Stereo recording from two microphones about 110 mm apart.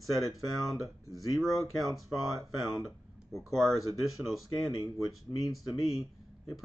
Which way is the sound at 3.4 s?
Centre (ahead or behind).